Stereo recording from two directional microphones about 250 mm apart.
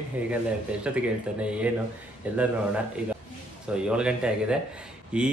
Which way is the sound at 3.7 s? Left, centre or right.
Centre.